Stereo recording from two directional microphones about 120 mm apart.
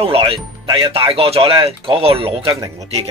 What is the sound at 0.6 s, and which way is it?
Speech, 40° right (ahead or behind).